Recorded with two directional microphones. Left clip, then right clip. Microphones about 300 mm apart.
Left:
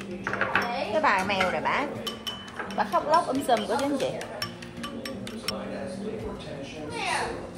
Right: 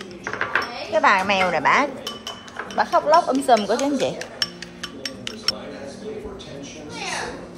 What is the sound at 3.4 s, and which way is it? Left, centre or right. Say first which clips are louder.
Speech: right 7 dB; right.